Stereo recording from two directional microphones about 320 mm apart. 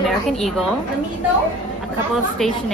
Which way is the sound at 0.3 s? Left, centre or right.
Centre.